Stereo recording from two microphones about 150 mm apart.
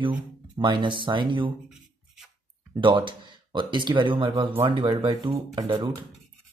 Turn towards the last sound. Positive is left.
turn(degrees=-30)  # may be behind; listen again after turning